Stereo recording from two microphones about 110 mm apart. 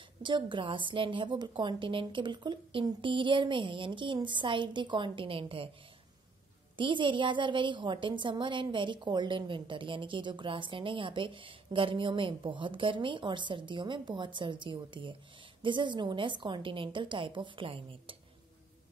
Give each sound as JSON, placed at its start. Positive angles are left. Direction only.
{"t": 0.2, "sound": "a woman's voice", "side_deg": -45}
{"t": 6.8, "sound": "a woman's voice", "side_deg": -50}